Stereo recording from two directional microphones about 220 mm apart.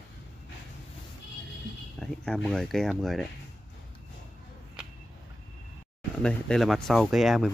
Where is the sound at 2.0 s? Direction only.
5° left (ahead or behind).